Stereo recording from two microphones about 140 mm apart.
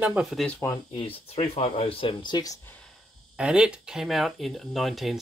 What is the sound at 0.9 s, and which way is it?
Speech, 40° left (ahead or behind).